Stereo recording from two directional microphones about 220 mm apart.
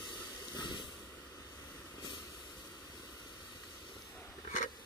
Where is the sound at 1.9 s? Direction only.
20° left (ahead or behind).